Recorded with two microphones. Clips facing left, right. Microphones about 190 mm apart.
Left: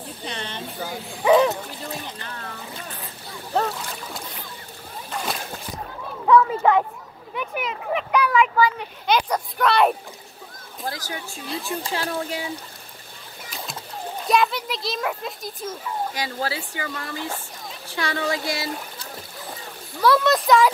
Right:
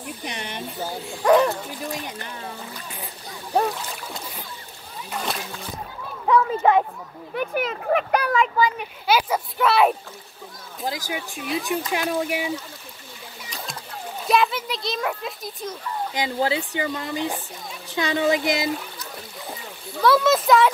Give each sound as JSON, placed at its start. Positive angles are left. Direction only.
{"t": 0.0, "sound": "speech", "side_deg": -15}
{"t": 0.7, "sound": "a child's voice", "side_deg": 0}
{"t": 1.9, "sound": "speech", "side_deg": -15}
{"t": 3.5, "sound": "speech", "side_deg": -15}
{"t": 6.2, "sound": "a sound", "side_deg": -25}
{"t": 7.3, "sound": "speech", "side_deg": -40}
{"t": 8.5, "sound": "speech", "side_deg": -15}
{"t": 9.0, "sound": "a child's voice", "side_deg": -5}
{"t": 10.9, "sound": "speech", "side_deg": -15}
{"t": 14.2, "sound": "a child's voice", "side_deg": 0}
{"t": 16.1, "sound": "speech", "side_deg": -25}
{"t": 20.0, "sound": "a child's voice", "side_deg": 0}